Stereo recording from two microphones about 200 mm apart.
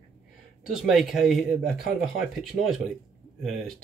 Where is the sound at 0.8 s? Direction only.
Centre (ahead or behind).